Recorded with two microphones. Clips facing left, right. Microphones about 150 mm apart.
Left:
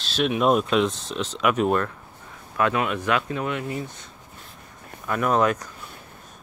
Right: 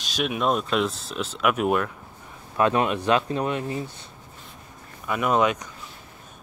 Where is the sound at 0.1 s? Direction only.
5° right (ahead or behind).